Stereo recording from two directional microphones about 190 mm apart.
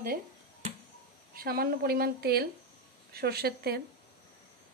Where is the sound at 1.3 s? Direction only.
50° right (ahead or behind).